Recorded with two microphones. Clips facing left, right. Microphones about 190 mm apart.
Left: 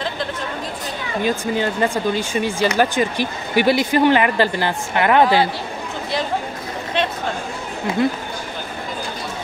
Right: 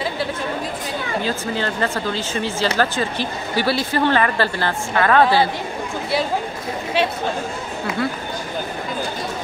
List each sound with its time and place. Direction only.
1.2 s speech: 15° left (ahead or behind)